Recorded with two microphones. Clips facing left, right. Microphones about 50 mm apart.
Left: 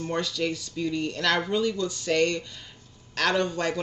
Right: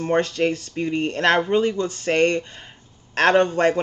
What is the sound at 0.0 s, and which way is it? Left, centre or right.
Speech, right.